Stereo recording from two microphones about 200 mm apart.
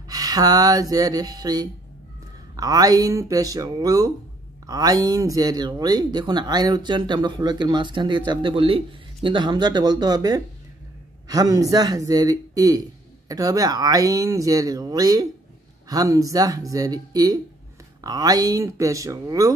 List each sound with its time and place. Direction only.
0.1 s speech: 20° right (ahead or behind)